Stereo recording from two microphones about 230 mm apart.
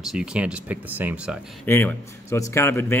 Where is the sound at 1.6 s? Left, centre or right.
Centre.